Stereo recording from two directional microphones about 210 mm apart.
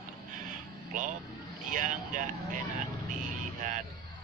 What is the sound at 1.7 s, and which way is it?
Speech, 40° right (ahead or behind).